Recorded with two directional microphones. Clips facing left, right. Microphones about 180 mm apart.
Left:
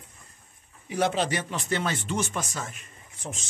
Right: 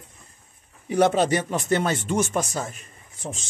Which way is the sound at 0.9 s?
50° right (ahead or behind).